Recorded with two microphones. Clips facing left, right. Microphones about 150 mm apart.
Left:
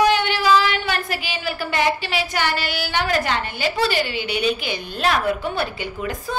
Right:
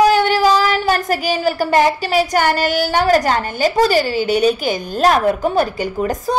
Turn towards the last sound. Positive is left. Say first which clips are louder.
# right 8 dB
turn(degrees=-40)  # may be behind; listen again after turning